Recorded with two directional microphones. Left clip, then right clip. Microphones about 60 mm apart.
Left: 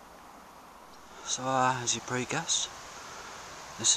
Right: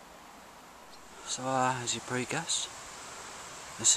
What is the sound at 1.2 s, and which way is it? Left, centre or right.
Speech, centre.